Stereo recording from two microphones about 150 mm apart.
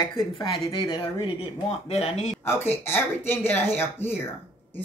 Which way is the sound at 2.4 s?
15° left (ahead or behind).